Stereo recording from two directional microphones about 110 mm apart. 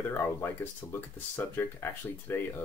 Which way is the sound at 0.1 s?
20° left (ahead or behind).